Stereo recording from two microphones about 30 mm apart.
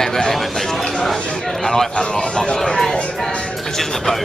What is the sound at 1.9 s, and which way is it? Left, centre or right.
Speech, left.